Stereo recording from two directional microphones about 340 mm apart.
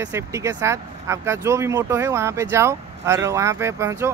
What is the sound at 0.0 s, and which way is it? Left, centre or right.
Speech, centre.